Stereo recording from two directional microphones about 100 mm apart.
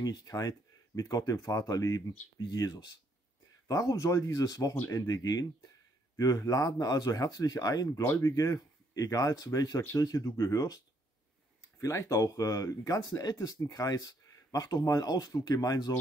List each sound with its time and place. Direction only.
0.0 s speech: 40° left (ahead or behind)
8.0 s speech: 30° left (ahead or behind)
11.8 s speech: 30° left (ahead or behind)